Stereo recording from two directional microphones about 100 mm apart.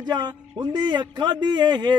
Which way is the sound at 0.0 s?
45° right (ahead or behind).